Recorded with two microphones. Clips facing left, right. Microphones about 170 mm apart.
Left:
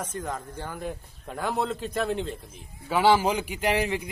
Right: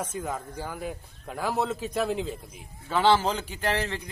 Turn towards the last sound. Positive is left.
turn(degrees=15)  # may be behind; listen again after turning